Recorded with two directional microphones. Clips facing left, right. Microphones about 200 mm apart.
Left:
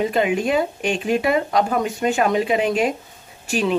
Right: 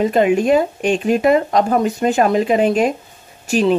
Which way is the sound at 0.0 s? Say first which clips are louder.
Right 5 dB; 40° right (ahead or behind).